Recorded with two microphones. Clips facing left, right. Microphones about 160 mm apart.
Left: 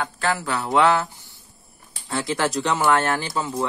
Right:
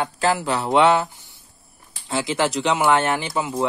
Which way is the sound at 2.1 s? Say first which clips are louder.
Right 2 dB; centre (ahead or behind).